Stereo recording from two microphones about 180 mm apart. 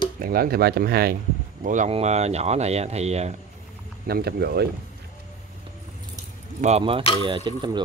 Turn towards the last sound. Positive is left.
turn(degrees=-25)  # may be behind; listen again after turning